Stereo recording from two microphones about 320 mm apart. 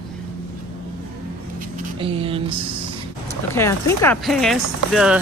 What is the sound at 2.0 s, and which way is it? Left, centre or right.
Speech, centre.